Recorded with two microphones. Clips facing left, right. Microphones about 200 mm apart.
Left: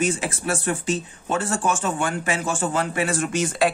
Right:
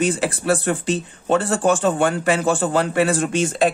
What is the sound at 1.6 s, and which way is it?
Speech, 35° right (ahead or behind).